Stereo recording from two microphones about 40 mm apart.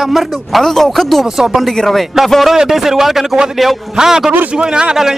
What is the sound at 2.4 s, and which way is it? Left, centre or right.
Music, centre.